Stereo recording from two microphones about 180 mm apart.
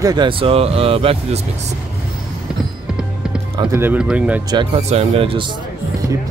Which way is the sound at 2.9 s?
5° right (ahead or behind).